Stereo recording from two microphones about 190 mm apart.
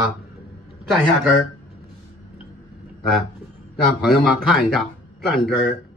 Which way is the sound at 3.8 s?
Centre (ahead or behind).